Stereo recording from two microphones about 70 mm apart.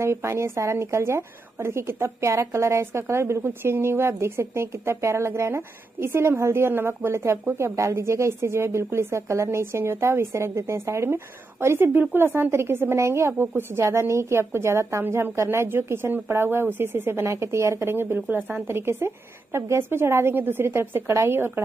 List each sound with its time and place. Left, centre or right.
0.0 s a woman's voice: right